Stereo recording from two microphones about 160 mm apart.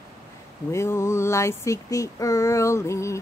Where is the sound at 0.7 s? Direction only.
15° left (ahead or behind).